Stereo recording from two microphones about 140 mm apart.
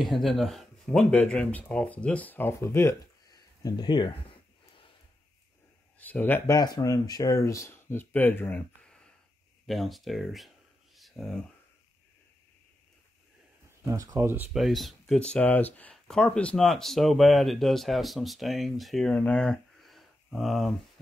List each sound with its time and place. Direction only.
0.0 s speech: centre (ahead or behind); by 4.1 s 30° left (ahead or behind)
5.9 s speech: 10° left (ahead or behind)
6.5 s speech: 30° left (ahead or behind); by 10.5 s centre (ahead or behind)
11.0 s a sound: centre (ahead or behind)
13.7 s speech: 20° right (ahead or behind)
14.5 s speech: centre (ahead or behind)